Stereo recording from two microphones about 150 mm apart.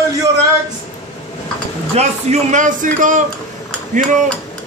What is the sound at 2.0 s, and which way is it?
Speech, 50° right (ahead or behind).